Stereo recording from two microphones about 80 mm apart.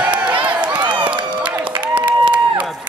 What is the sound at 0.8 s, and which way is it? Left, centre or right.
Crowd, right.